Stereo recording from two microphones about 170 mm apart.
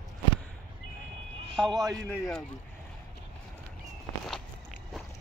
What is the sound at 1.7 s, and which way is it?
Speech, 20° right (ahead or behind).